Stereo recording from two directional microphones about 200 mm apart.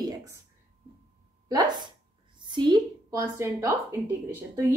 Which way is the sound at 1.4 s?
20° right (ahead or behind).